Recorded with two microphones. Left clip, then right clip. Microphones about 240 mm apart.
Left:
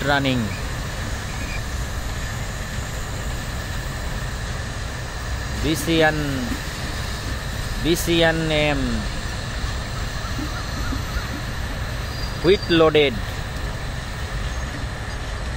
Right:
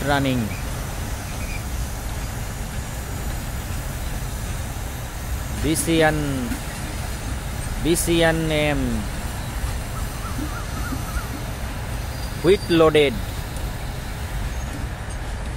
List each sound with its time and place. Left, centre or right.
0.0 s speech: centre
5.7 s speech: centre
7.8 s speech: centre
12.4 s speech: centre